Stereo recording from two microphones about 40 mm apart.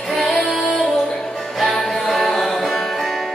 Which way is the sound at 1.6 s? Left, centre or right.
Centre.